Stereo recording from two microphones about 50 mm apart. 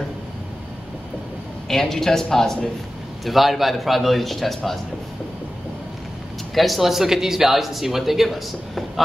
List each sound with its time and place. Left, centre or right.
1.7 s speech: centre
3.3 s speech: centre
6.5 s speech: centre